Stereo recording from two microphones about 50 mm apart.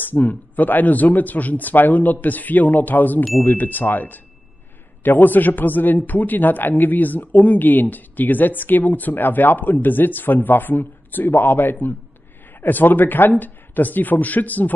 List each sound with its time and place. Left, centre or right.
0.0 s a man's voice: left